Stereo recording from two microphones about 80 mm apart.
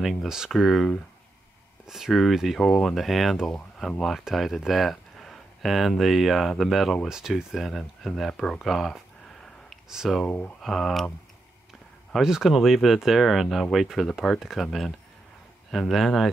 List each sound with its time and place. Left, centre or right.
0.0 s speech: centre
12.1 s speech: centre